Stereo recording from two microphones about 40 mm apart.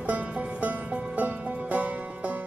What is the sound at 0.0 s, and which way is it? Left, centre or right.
Music, right.